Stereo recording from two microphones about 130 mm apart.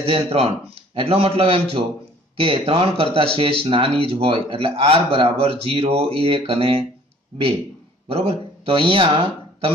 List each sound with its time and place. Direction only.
0.0 s speech: 50° right (ahead or behind)
8.1 s speech: 50° right (ahead or behind)